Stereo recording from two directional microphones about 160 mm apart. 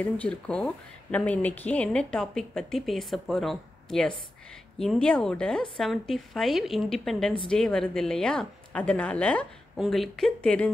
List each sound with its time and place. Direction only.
0.0 s speech: 10° left (ahead or behind)